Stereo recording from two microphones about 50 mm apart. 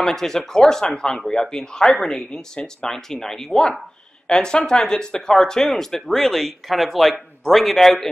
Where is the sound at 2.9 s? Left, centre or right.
Centre.